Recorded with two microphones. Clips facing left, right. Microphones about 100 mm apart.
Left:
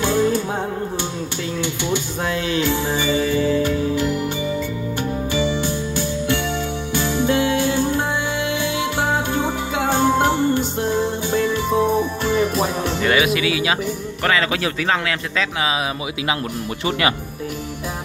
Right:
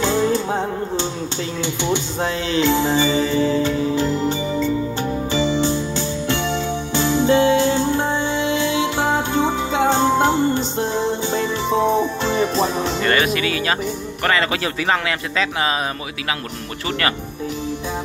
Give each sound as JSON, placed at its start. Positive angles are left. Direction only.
{"t": 0.0, "sound": "music", "side_deg": -25}
{"t": 9.4, "sound": "music", "side_deg": 10}
{"t": 10.2, "sound": "music", "side_deg": -20}
{"t": 10.6, "sound": "music", "side_deg": 5}
{"t": 11.2, "sound": "music", "side_deg": -25}
{"t": 13.0, "sound": "speech", "side_deg": 5}